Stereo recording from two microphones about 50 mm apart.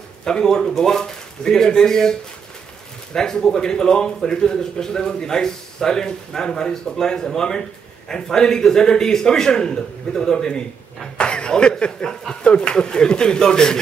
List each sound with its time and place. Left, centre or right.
0.2 s a man's voice: centre